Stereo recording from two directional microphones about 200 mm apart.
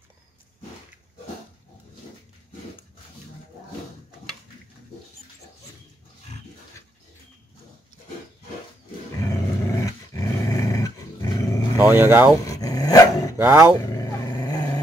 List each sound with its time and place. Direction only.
9.2 s dog: 15° left (ahead or behind)
11.9 s speech: 10° right (ahead or behind)
12.4 s dog: 15° left (ahead or behind)
13.4 s speech: 10° right (ahead or behind)
13.9 s vehicle: 20° left (ahead or behind)